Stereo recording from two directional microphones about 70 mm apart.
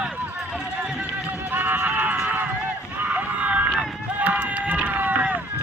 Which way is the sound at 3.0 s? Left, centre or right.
Right.